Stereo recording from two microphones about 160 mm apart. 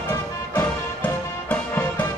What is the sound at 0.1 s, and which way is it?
Music, 20° left (ahead or behind).